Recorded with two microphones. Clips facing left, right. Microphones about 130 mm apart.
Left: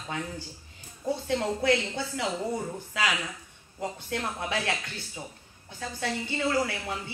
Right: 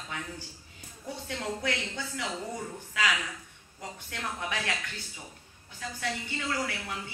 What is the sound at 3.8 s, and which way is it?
Speech, 30° left (ahead or behind).